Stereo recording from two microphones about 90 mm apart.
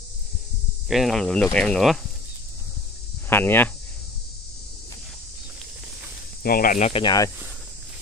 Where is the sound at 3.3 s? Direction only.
25° left (ahead or behind).